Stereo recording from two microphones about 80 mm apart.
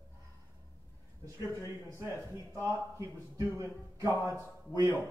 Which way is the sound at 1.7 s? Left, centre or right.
Right.